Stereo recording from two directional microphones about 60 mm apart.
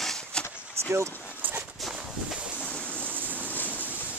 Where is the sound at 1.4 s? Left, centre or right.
Right.